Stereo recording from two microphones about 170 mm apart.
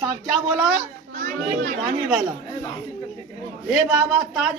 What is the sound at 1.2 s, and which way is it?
Chatter, 55° right (ahead or behind).